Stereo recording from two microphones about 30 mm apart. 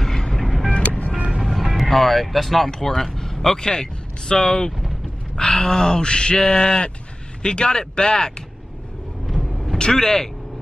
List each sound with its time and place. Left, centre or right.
0.0 s vehicle: centre
0.8 s music: left
1.4 s vehicle: centre
1.9 s speech: centre
3.2 s vehicle: centre
3.5 s speech: left
9.2 s vehicle: centre
9.8 s speech: left